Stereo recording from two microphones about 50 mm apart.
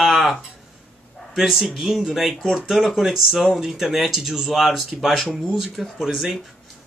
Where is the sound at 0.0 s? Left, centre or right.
Centre.